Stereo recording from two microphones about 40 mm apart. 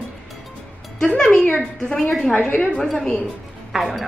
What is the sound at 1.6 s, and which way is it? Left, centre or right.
A woman's voice, centre.